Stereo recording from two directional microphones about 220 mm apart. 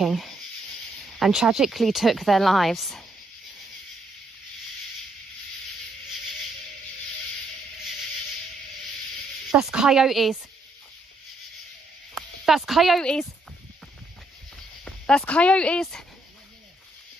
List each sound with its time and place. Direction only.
0.0 s snake: centre (ahead or behind)
1.2 s speech: 5° right (ahead or behind)
9.5 s speech: 5° right (ahead or behind)
12.1 s speech: centre (ahead or behind)
14.9 s speech: 5° left (ahead or behind)